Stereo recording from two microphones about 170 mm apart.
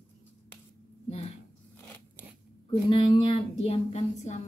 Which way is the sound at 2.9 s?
30° left (ahead or behind).